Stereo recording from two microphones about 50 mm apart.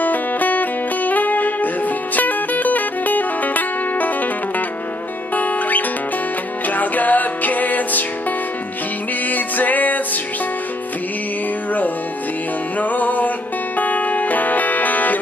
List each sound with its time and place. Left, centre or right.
0.0 s music: left
5.3 s music: left
9.3 s music: left
12.7 s music: left